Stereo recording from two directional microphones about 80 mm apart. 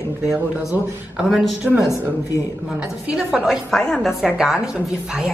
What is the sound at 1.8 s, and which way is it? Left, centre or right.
Speech, left.